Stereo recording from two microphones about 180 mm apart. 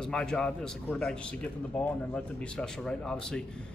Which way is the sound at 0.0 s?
5° left (ahead or behind).